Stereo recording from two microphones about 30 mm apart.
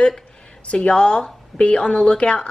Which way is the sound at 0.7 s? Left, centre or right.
Left.